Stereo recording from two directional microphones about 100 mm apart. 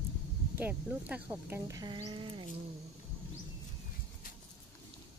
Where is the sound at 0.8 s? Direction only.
15° right (ahead or behind).